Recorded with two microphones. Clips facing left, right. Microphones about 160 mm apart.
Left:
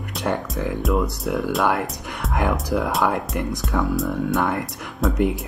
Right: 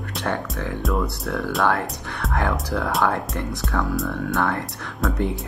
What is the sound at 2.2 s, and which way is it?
Speech, centre (ahead or behind).